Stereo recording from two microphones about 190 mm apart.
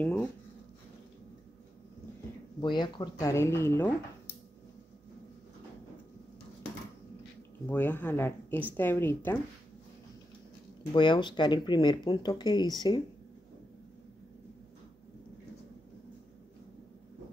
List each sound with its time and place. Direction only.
0.0 s speech: 10° left (ahead or behind)
2.6 s speech: 25° left (ahead or behind)
7.6 s speech: 10° left (ahead or behind)
10.9 s speech: 25° left (ahead or behind)